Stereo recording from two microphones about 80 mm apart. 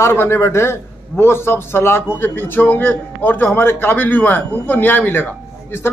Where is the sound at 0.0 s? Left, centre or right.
Left.